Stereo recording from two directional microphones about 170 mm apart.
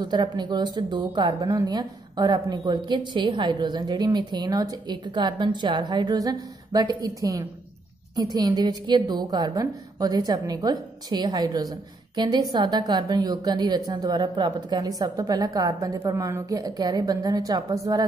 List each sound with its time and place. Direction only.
0.0 s a woman's voice: 25° right (ahead or behind)